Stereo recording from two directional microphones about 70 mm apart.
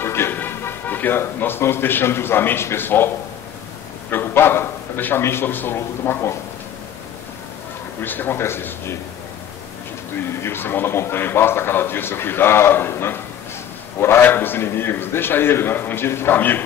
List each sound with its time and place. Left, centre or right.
0.0 s a man's voice: left
8.0 s a man's voice: left
10.2 s a man's voice: left